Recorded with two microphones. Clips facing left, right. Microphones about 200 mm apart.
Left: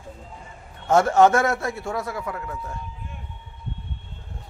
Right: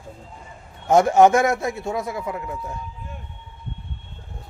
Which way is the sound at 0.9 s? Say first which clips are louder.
Right 2 dB; 15° right (ahead or behind).